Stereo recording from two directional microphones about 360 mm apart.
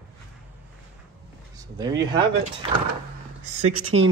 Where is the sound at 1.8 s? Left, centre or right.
Centre.